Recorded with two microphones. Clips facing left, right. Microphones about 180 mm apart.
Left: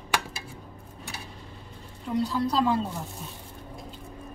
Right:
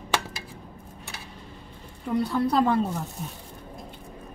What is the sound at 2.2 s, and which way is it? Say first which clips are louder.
Speech: right 2 dB; 55° right (ahead or behind).